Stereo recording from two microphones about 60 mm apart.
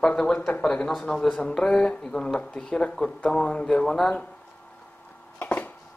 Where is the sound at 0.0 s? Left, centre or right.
Centre.